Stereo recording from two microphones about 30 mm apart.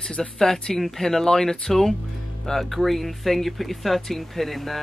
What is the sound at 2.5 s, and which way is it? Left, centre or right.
Speech, centre.